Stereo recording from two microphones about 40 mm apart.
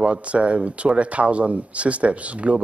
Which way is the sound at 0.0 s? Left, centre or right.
Right.